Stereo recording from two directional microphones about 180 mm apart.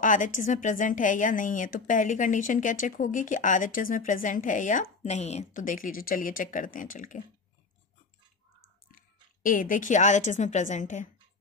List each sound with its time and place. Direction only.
0.0 s a woman's voice: 45° left (ahead or behind)
8.9 s a woman's voice: 50° left (ahead or behind)